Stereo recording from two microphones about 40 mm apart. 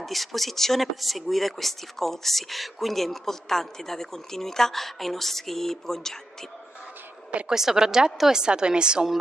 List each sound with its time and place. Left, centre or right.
0.0 s speech: centre
7.4 s a woman's voice: centre